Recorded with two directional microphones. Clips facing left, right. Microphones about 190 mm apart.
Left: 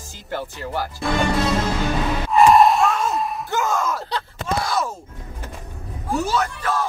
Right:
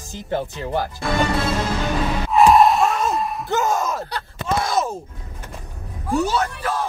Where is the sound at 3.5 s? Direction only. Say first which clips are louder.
Right 2 dB; 15° right (ahead or behind).